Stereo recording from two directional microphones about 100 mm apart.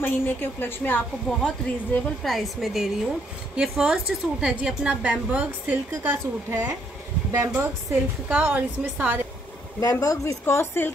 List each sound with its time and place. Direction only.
0.0 s a woman's voice: 20° left (ahead or behind)
2.2 s a woman's voice: centre (ahead or behind); by 9.2 s 15° right (ahead or behind)
9.8 s speech: 40° left (ahead or behind)
10.4 s a woman's voice: 25° left (ahead or behind)